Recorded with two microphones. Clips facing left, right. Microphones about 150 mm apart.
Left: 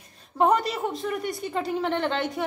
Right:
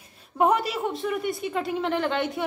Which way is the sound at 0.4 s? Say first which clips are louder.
Even; 5° right (ahead or behind).